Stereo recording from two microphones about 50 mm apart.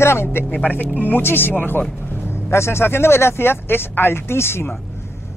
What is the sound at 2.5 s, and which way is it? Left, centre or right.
Speech, left.